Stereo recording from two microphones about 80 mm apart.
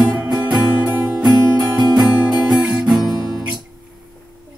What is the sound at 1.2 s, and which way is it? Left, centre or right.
Music, right.